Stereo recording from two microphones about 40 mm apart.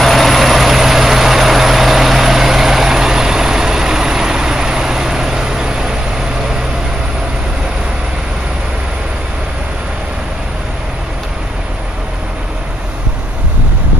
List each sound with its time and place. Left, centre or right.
0.0 s vehicle: centre